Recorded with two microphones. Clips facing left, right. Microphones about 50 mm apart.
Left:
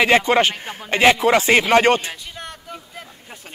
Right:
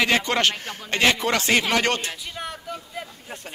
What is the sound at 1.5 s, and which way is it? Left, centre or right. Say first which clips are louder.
Speech: left 6 dB; left.